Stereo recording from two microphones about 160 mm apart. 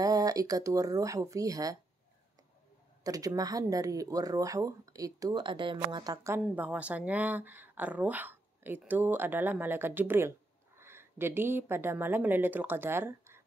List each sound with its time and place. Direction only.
0.0 s speech: 25° right (ahead or behind)
3.0 s speech: 20° right (ahead or behind)
6.4 s speech: 10° right (ahead or behind)